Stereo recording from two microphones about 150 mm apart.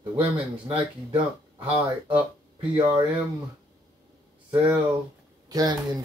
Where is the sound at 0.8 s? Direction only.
40° right (ahead or behind).